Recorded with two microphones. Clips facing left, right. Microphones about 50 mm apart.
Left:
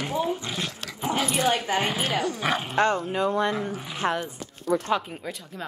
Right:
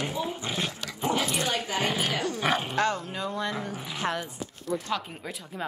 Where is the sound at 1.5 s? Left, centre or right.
Left.